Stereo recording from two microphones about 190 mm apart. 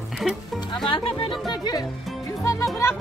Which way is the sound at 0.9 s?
30° left (ahead or behind).